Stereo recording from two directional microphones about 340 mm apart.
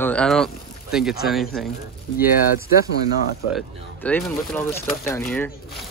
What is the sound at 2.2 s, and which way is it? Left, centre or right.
Speech, left.